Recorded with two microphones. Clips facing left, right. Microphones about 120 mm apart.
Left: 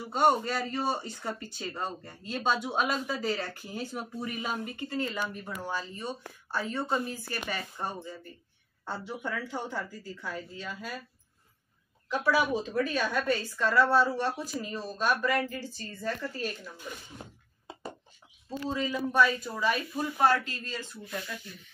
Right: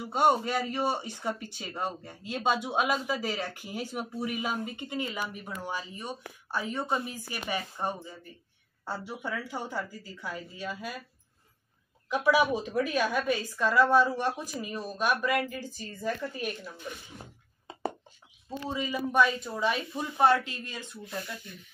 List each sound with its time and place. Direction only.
0.0 s speech: 5° right (ahead or behind)
12.1 s speech: 15° right (ahead or behind)
18.6 s speech: 15° right (ahead or behind)
19.2 s speech: 25° right (ahead or behind)